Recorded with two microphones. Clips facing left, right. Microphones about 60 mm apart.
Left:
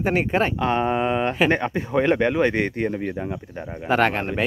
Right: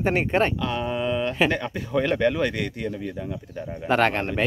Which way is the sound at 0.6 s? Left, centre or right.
Left.